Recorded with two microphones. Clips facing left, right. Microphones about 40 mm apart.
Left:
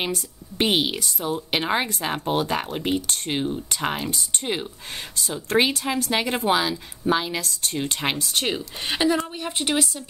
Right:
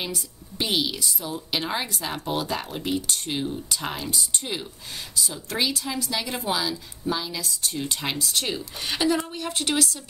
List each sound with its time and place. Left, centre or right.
0.1 s a woman's voice: left
1.9 s speech: left
2.1 s a woman's voice: left
7.8 s a woman's voice: left